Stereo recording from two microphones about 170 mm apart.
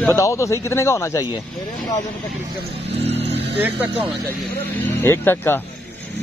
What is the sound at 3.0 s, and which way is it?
Speech, 40° right (ahead or behind).